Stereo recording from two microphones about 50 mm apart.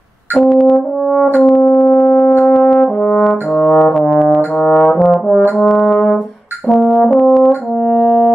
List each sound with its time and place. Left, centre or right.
0.4 s brass instrument: centre
1.0 s french horn: centre
1.3 s brass instrument: centre
3.0 s brass instrument: centre
3.8 s brass instrument: centre
7.8 s french horn: centre